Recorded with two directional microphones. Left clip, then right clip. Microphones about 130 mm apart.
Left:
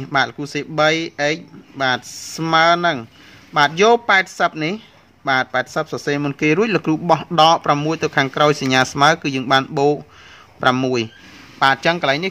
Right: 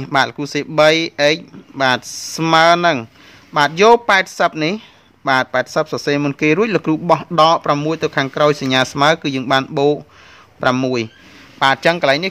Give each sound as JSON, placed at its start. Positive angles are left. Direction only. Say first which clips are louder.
{"t": 0.0, "sound": "speech", "louder": "right 3 dB", "side_deg": -30}